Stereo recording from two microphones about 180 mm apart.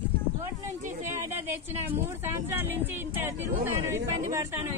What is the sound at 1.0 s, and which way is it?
A woman's voice, 15° right (ahead or behind).